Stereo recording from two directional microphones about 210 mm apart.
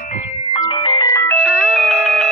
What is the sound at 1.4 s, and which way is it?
Music, centre (ahead or behind).